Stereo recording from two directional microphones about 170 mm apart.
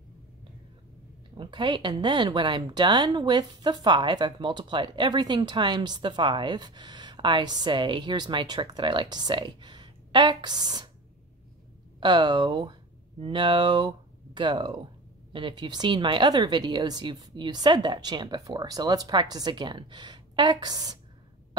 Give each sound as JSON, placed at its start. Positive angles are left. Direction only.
{"t": 1.3, "sound": "speech", "side_deg": -30}
{"t": 12.0, "sound": "speech", "side_deg": -25}